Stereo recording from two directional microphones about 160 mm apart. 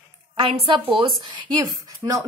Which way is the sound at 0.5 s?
35° right (ahead or behind).